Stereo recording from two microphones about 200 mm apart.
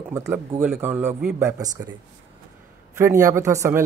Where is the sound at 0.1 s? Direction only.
10° right (ahead or behind).